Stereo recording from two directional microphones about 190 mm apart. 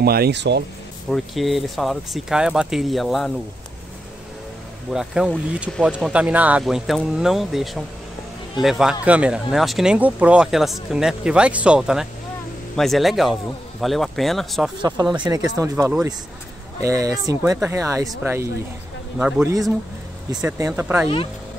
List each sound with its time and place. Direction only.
0.0 s speech: 55° right (ahead or behind)
1.1 s speech: centre (ahead or behind)
4.9 s speech: 5° right (ahead or behind)
14.8 s speech: 20° right (ahead or behind)
15.7 s speech: 5° right (ahead or behind)